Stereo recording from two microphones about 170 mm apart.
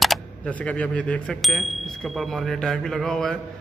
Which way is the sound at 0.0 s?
5° left (ahead or behind).